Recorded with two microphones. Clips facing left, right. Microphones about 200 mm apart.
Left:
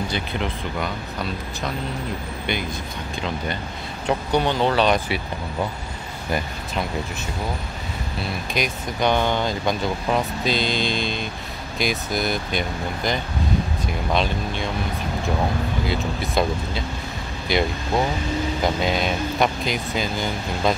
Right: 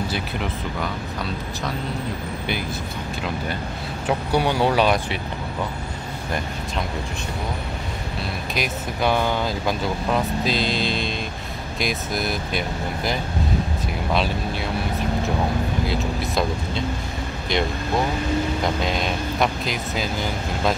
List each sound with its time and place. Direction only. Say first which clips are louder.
0.1 s speech: even; 5° right (ahead or behind)
4.1 s speech: even; 10° right (ahead or behind)
8.5 s speech: left 1 dB; 5° right (ahead or behind)
15.9 s speech: even; centre (ahead or behind)
18.8 s speech: left 2 dB; centre (ahead or behind)